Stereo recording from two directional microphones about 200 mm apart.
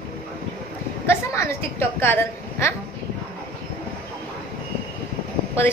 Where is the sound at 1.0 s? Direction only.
15° left (ahead or behind).